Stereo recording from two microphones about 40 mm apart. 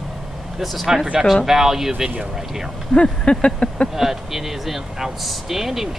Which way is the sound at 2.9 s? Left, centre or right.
Left.